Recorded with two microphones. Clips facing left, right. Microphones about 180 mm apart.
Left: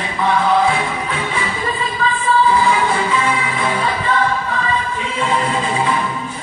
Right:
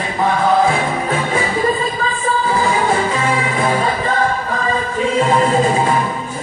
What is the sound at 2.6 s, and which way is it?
Music, 45° right (ahead or behind).